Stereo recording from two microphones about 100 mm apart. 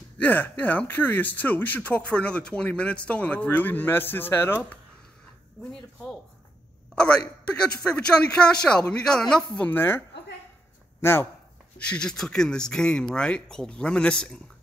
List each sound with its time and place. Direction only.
0.2 s speech: 15° left (ahead or behind)
5.6 s speech: 5° left (ahead or behind)
7.4 s speech: 10° left (ahead or behind)
9.7 s a woman's voice: 20° left (ahead or behind)
11.8 s speech: 10° left (ahead or behind)